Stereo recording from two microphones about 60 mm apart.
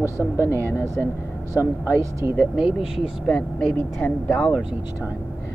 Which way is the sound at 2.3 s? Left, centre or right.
Centre.